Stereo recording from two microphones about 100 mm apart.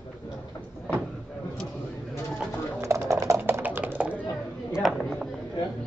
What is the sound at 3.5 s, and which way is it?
Typing, 20° right (ahead or behind).